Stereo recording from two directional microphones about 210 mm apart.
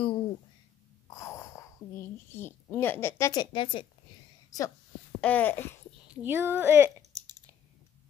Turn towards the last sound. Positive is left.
turn(degrees=-10)  # may be behind; listen again after turning